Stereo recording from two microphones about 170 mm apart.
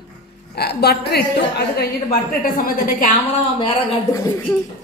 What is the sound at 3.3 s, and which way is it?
Speech, 35° left (ahead or behind).